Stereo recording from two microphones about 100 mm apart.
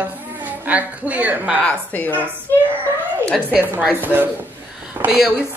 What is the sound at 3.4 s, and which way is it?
Speech, 15° right (ahead or behind).